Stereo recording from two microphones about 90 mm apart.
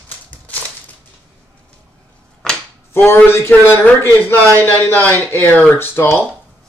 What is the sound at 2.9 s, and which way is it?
A man's voice, 25° left (ahead or behind).